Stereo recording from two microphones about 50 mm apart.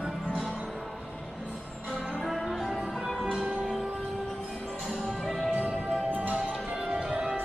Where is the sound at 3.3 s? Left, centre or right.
Centre.